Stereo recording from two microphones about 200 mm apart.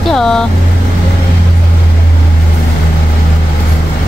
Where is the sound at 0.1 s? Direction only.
Centre (ahead or behind).